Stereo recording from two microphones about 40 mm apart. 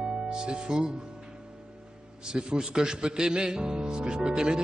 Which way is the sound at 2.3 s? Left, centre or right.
Right.